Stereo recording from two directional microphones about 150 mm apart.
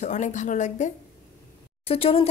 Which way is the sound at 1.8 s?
40° left (ahead or behind).